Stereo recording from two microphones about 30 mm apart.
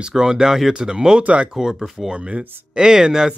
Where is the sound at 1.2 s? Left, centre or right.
Right.